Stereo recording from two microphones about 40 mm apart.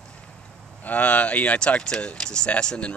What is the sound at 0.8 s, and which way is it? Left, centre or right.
Speech, left.